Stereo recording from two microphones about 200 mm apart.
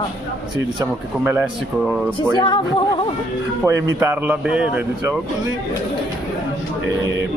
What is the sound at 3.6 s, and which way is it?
Speech, 15° right (ahead or behind).